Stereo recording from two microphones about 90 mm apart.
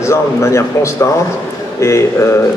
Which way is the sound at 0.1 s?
35° left (ahead or behind).